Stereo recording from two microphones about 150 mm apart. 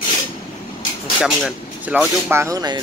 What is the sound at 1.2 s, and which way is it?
Speech, centre (ahead or behind).